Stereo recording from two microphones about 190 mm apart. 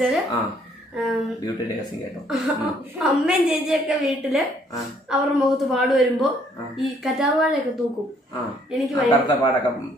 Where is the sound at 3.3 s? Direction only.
5° right (ahead or behind).